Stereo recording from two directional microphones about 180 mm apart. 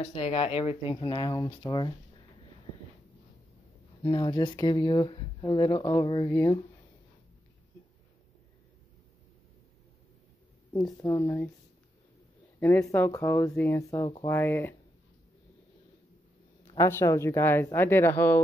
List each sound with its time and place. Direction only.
0.0 s speech: 35° left (ahead or behind)
4.1 s speech: 25° left (ahead or behind)
10.7 s speech: 20° left (ahead or behind)
12.5 s speech: 10° left (ahead or behind)
16.7 s speech: 15° left (ahead or behind)